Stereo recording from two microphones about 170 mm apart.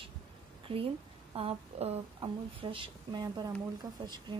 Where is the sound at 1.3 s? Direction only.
35° right (ahead or behind).